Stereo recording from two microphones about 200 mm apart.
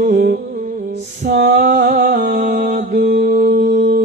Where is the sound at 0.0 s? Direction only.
45° right (ahead or behind).